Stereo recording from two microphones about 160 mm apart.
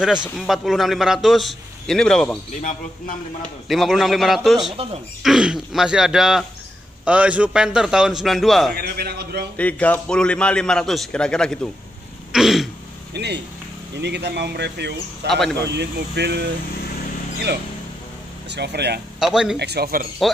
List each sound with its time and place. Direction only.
0.0 s a man's voice: 5° right (ahead or behind)
3.6 s a man's voice: centre (ahead or behind)
8.7 s a man's voice: 75° right (ahead or behind)
9.6 s a man's voice: 10° left (ahead or behind)
12.3 s throat clearing: 5° right (ahead or behind)
13.1 s speech: 90° right
15.2 s a man's voice: centre (ahead or behind)
15.7 s speech: 90° right
18.5 s speech: 90° right
19.1 s speech: 5° right (ahead or behind)
19.5 s a man's voice: 90° right; by 20.1 s 75° right (ahead or behind)